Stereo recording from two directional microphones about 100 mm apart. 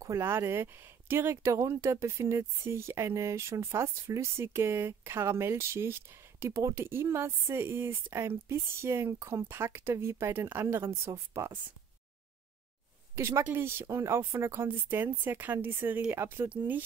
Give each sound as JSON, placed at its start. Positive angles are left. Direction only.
{"t": 0.0, "sound": "speech", "side_deg": -30}
{"t": 13.1, "sound": "speech", "side_deg": -30}